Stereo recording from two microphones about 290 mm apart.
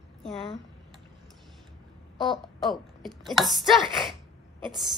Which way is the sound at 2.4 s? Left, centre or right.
Centre.